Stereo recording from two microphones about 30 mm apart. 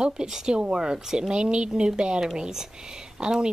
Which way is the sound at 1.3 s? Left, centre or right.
Right.